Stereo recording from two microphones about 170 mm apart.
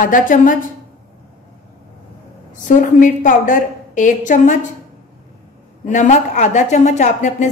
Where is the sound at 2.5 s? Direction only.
50° left (ahead or behind).